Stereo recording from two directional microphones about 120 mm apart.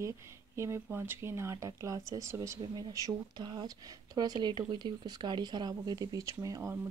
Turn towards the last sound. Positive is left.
turn(degrees=-30)  # may be behind; listen again after turning